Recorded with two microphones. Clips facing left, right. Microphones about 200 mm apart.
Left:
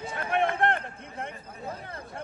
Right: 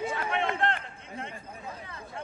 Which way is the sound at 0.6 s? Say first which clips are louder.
Left 3 dB; 55° left (ahead or behind).